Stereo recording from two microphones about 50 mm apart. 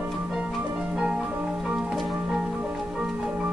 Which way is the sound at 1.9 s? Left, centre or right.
Centre.